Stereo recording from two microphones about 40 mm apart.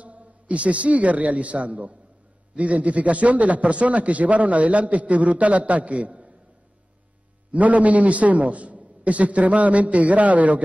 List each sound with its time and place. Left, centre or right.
0.0 s a man's voice: right
7.5 s a man's voice: right